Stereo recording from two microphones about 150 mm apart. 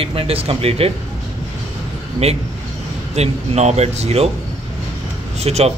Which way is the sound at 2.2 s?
45° right (ahead or behind).